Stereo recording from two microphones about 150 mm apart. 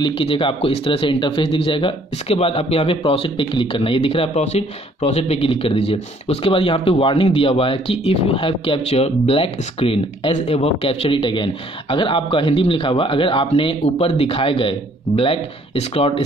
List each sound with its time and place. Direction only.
0.0 s speech: 40° left (ahead or behind)